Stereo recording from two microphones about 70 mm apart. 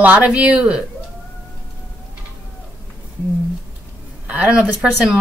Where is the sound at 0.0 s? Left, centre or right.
Right.